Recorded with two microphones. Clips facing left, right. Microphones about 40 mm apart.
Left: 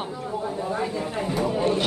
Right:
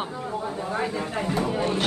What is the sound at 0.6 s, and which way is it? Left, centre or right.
Speech, right.